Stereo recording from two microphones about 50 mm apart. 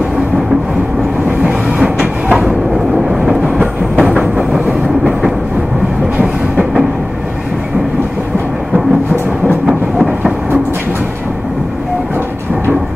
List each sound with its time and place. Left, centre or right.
1.4 s music: right
3.4 s train: right
6.1 s train: right
9.7 s train: centre